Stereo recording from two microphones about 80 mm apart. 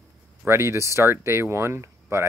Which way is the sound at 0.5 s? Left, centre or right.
Right.